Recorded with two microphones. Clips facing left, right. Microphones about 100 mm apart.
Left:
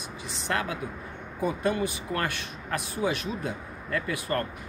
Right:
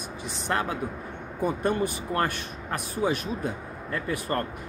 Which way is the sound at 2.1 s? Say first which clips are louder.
Right 3 dB; 30° right (ahead or behind).